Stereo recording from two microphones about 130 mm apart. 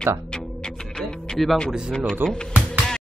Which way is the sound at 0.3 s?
5° left (ahead or behind).